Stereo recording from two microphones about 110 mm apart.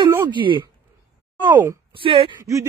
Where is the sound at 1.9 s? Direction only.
50° right (ahead or behind).